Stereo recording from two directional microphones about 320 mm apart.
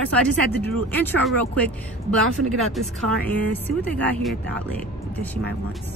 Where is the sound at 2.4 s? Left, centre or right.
Right.